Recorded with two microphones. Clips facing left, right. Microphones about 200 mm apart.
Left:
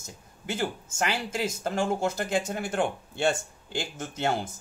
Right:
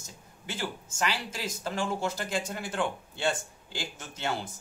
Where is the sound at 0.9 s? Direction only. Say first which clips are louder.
Left 3 dB; 50° left (ahead or behind).